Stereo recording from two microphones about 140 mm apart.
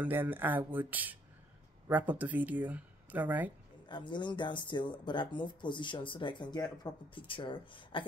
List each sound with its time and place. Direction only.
0.0 s speech: 15° right (ahead or behind)
3.9 s speech: 35° left (ahead or behind)